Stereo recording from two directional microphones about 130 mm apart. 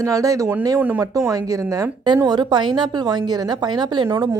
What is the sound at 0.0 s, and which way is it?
A woman's voice, 25° right (ahead or behind).